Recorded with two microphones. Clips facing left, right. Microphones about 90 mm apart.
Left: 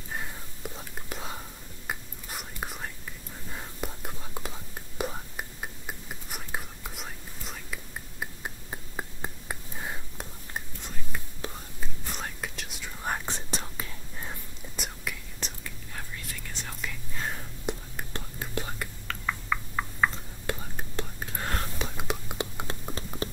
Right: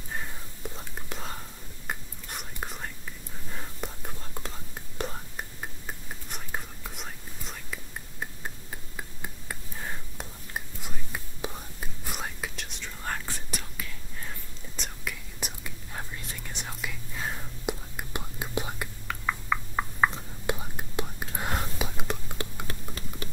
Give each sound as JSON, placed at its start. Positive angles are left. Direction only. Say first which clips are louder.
{"t": 0.7, "sound": "whispering", "louder": "even", "side_deg": 0}
{"t": 8.6, "sound": "a sound", "louder": "left 3 dB", "side_deg": 25}
{"t": 9.8, "sound": "a sound", "louder": "right 1 dB", "side_deg": 10}
{"t": 10.5, "sound": "whispering", "louder": "right 1 dB", "side_deg": -10}
{"t": 13.0, "sound": "whispering", "louder": "left 3 dB", "side_deg": 20}
{"t": 15.1, "sound": "whispering", "louder": "right 1 dB", "side_deg": 0}
{"t": 15.4, "sound": "whispering", "louder": "right 1 dB", "side_deg": -10}
{"t": 16.8, "sound": "whispering", "louder": "even", "side_deg": -5}
{"t": 21.9, "sound": "whispering", "louder": "left 1 dB", "side_deg": 5}
{"t": 22.4, "sound": "a sound", "louder": "left 3 dB", "side_deg": 25}